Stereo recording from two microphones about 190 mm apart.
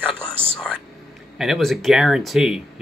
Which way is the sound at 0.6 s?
5° left (ahead or behind).